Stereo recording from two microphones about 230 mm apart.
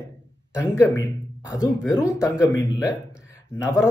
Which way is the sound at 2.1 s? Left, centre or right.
Centre.